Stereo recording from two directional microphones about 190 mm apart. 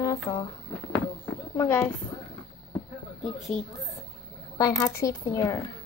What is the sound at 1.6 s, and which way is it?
Speech, 10° left (ahead or behind).